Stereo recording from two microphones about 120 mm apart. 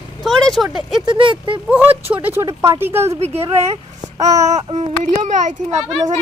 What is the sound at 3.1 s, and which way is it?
Speech, 60° right (ahead or behind).